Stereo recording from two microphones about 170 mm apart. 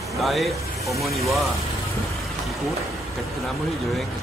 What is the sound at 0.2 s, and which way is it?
Speech, centre (ahead or behind).